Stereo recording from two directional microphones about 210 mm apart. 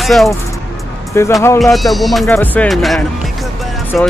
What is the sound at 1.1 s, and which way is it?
Speech, 10° left (ahead or behind).